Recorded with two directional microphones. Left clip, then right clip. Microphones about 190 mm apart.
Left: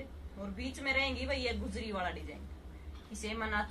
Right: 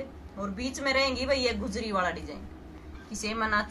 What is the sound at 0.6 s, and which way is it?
A woman's voice, 5° right (ahead or behind).